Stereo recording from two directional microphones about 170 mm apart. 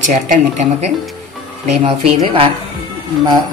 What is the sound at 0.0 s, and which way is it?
Speech, 45° right (ahead or behind).